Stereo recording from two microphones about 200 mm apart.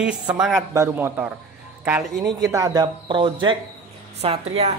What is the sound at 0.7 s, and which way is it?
A man's voice, 10° right (ahead or behind).